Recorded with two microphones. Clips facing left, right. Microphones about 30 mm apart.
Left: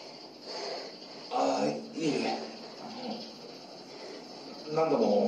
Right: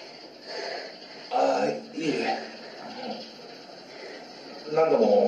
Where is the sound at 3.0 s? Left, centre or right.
Right.